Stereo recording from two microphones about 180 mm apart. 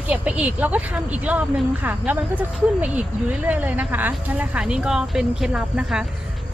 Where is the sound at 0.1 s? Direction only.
5° right (ahead or behind).